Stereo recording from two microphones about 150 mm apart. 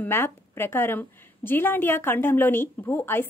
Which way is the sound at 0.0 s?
15° left (ahead or behind).